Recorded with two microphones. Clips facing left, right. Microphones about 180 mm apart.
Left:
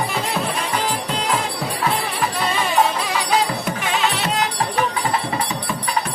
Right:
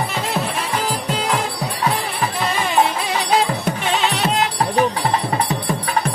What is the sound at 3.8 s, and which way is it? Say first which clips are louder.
Music: right 2 dB; 30° right (ahead or behind).